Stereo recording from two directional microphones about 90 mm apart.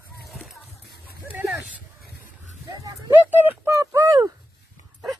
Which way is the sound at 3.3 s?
25° right (ahead or behind).